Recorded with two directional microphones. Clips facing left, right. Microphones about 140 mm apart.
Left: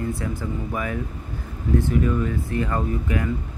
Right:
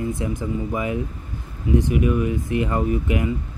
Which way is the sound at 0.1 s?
20° right (ahead or behind).